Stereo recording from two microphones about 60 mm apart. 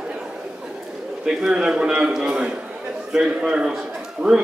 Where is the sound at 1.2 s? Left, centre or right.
Centre.